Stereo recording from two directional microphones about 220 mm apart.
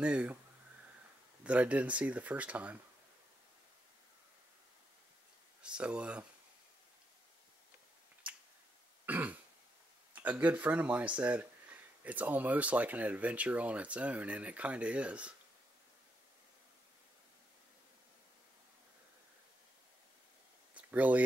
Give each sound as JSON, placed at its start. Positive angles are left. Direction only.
{"t": 0.0, "sound": "speech", "side_deg": -5}
{"t": 1.4, "sound": "speech", "side_deg": -5}
{"t": 5.6, "sound": "speech", "side_deg": -5}
{"t": 9.0, "sound": "throat clearing", "side_deg": -5}
{"t": 10.1, "sound": "speech", "side_deg": -5}
{"t": 20.7, "sound": "a sound", "side_deg": -5}